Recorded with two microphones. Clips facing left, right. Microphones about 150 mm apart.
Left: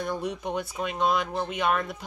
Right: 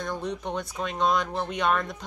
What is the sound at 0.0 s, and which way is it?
Speech, 10° left (ahead or behind).